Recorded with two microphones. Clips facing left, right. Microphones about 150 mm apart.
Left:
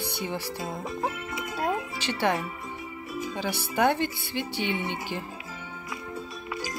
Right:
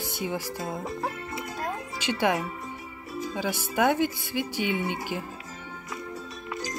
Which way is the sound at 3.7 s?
10° right (ahead or behind).